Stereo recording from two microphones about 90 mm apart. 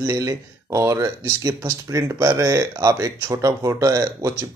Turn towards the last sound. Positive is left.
turn(degrees=-40)  # may be behind; listen again after turning